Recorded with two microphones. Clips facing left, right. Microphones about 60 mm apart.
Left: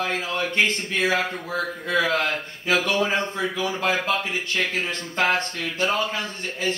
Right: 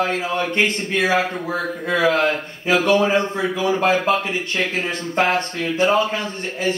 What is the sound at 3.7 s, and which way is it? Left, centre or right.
Speech, right.